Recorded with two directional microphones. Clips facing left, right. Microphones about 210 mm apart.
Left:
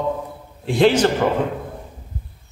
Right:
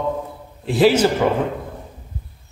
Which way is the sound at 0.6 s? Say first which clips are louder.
Right 1 dB; 5° right (ahead or behind).